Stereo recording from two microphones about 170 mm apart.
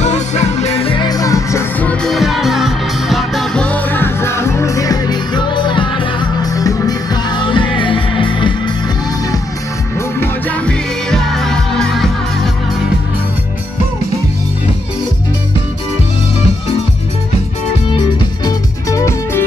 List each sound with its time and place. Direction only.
0.0 s music: 40° left (ahead or behind)
10.2 s music: 10° left (ahead or behind)
17.9 s music: 20° left (ahead or behind)